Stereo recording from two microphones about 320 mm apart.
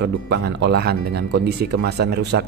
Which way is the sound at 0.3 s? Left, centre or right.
Right.